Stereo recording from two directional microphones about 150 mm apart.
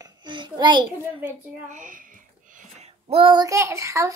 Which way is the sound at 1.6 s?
60° right (ahead or behind).